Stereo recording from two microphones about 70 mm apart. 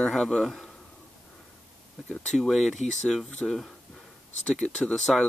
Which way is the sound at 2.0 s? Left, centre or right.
Centre.